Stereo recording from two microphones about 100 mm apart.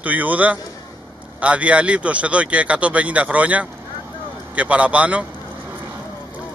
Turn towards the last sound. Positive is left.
turn(degrees=-15)  # may be behind; listen again after turning